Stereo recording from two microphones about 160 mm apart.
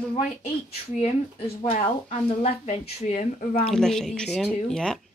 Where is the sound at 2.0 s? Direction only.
40° left (ahead or behind).